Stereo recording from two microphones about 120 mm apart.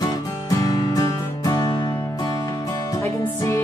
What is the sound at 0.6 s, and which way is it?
Music, 30° left (ahead or behind).